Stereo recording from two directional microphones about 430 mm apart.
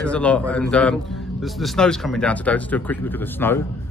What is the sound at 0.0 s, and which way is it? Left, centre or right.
A man's voice, centre.